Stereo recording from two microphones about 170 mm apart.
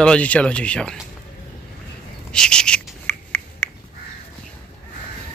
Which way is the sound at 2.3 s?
5° left (ahead or behind).